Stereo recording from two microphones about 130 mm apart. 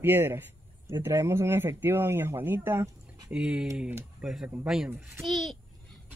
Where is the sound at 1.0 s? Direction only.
20° right (ahead or behind); by 5.6 s centre (ahead or behind).